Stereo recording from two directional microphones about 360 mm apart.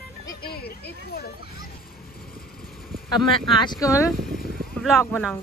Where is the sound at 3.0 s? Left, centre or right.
Centre.